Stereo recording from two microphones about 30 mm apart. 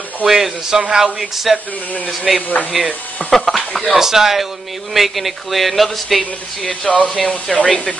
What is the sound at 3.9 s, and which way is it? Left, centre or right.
Speech, centre.